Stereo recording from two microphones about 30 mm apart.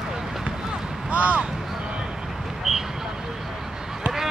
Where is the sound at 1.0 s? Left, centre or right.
Right.